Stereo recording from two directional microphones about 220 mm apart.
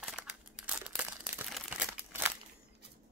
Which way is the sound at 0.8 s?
5° right (ahead or behind).